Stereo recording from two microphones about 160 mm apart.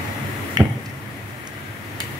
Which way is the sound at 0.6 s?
25° right (ahead or behind).